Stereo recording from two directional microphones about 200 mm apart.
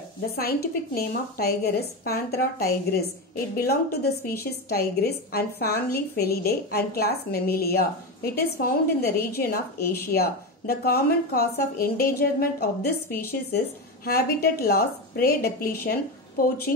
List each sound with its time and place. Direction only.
0.4 s a woman's voice: 50° left (ahead or behind)